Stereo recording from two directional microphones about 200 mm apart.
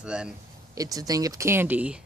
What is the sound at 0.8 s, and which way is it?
Speech, 15° right (ahead or behind).